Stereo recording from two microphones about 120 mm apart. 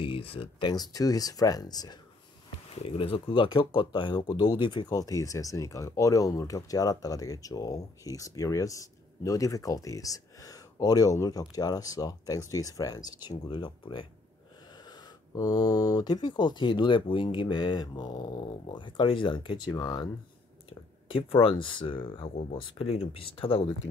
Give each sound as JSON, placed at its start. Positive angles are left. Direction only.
{"t": 0.0, "sound": "speech", "side_deg": 50}
{"t": 2.8, "sound": "speech", "side_deg": 50}
{"t": 14.9, "sound": "speech", "side_deg": 30}
{"t": 21.1, "sound": "speech", "side_deg": 50}